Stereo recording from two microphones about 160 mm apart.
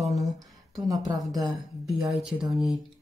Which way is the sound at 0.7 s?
20° right (ahead or behind).